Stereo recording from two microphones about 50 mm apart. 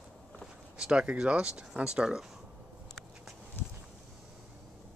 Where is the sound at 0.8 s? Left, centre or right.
Centre.